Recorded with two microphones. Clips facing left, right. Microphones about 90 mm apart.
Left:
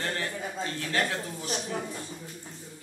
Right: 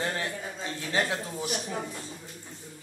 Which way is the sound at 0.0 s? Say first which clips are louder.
Right 1 dB; 15° right (ahead or behind).